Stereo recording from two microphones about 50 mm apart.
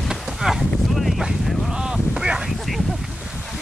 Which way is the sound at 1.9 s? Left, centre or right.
Centre.